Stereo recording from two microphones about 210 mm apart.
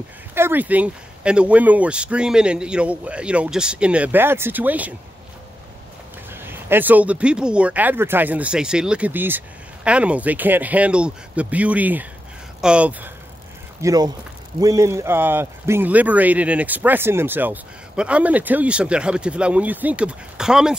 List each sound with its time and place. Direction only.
0.3 s speech: 10° right (ahead or behind)
6.3 s speech: 10° right (ahead or behind)
13.7 s speech: 15° right (ahead or behind)